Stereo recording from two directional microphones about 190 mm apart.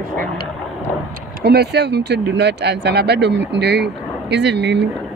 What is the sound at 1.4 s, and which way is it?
Speech, 60° right (ahead or behind).